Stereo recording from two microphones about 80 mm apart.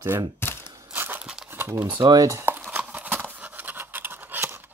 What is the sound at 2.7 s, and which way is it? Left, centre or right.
Clip-clop, right.